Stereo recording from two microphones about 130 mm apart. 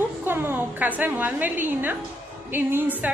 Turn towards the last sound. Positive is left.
turn(degrees=-15)  # may be behind; listen again after turning